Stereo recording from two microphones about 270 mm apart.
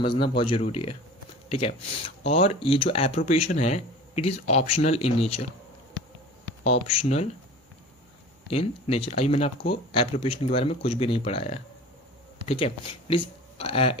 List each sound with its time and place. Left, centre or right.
0.0 s speech: centre
6.6 s speech: left
8.5 s speech: left